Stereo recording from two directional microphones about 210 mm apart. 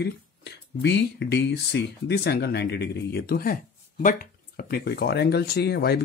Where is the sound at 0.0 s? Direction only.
55° left (ahead or behind).